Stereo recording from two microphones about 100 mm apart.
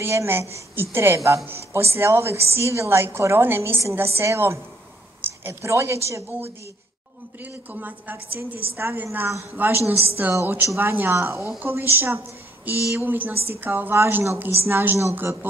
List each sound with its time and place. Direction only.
0.0 s speech: 25° right (ahead or behind)
7.7 s a woman's voice: 15° right (ahead or behind)
12.9 s speech: 20° right (ahead or behind)